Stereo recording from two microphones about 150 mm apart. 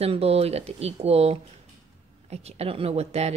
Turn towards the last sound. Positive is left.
turn(degrees=-45)  # may be behind; listen again after turning